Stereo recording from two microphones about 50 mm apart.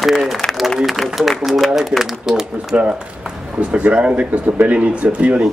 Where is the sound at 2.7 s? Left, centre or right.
Right.